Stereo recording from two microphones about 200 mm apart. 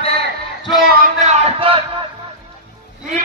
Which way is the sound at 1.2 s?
30° right (ahead or behind).